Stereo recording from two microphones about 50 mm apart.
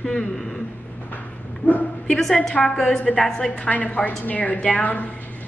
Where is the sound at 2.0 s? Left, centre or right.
Centre.